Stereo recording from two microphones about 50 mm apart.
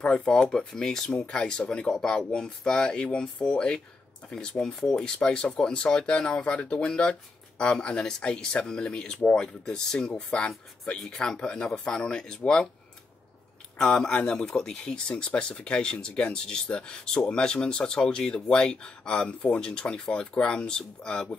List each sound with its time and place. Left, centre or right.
0.0 s speech: centre
13.7 s speech: centre